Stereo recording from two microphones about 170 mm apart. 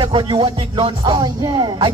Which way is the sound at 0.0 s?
30° right (ahead or behind).